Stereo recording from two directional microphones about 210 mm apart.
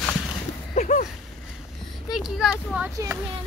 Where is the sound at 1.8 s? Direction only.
Centre (ahead or behind).